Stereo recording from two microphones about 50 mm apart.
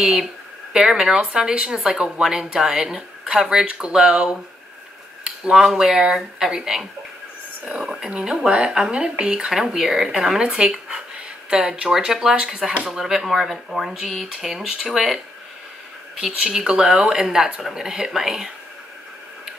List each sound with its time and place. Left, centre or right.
0.0 s speech: centre
16.6 s speech: centre